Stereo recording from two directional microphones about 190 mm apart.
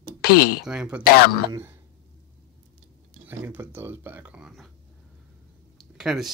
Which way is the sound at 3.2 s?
10° right (ahead or behind).